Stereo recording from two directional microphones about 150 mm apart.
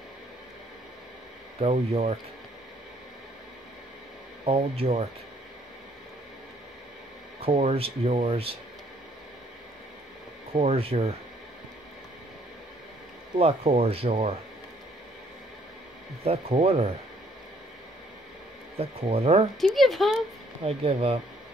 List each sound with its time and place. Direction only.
1.6 s speech: 45° right (ahead or behind)
4.5 s speech: 40° right (ahead or behind)
7.4 s speech: 40° right (ahead or behind)
10.5 s speech: 40° right (ahead or behind)
13.4 s speech: 40° right (ahead or behind)
16.3 s speech: 40° right (ahead or behind)
18.8 s speech: 40° right (ahead or behind)
19.6 s speech: centre (ahead or behind)
20.6 s speech: 40° right (ahead or behind)